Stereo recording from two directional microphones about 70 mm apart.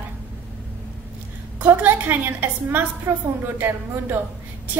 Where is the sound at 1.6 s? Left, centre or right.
Right.